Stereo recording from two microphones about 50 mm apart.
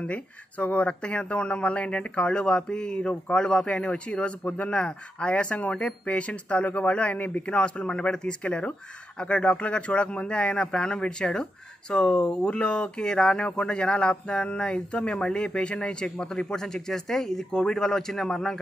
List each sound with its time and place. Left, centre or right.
0.0 s speech: left; by 18.6 s centre